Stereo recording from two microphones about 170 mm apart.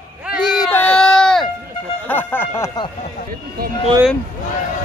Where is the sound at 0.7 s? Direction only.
10° left (ahead or behind).